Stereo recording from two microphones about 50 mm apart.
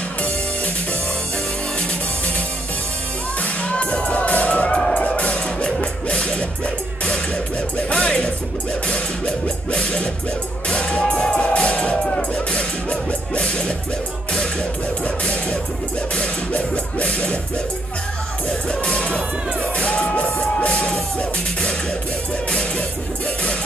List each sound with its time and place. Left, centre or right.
1.8 s music: left
3.6 s music: left
4.6 s music: centre
4.9 s music: left
7.7 s music: left
18.7 s music: left